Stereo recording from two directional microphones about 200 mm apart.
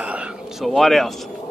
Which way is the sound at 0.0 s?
5° right (ahead or behind).